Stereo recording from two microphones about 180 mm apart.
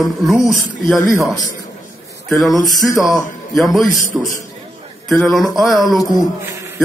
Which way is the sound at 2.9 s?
20° left (ahead or behind).